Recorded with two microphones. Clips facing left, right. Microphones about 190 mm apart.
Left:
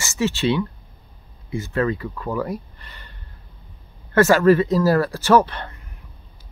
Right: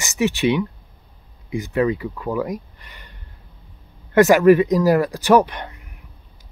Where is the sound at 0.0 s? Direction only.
15° right (ahead or behind).